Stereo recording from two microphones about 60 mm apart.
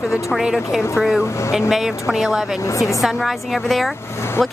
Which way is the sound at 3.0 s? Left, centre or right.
Centre.